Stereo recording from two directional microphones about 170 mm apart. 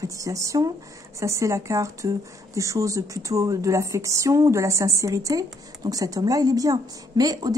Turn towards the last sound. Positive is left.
turn(degrees=-20)  # may be behind; listen again after turning